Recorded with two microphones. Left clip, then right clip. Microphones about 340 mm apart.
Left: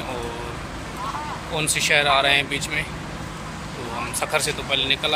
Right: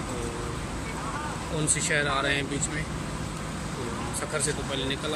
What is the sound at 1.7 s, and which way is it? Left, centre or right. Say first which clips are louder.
Speech: left 9 dB; centre.